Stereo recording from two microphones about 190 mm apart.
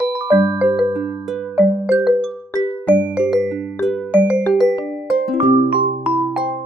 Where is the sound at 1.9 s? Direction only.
5° right (ahead or behind).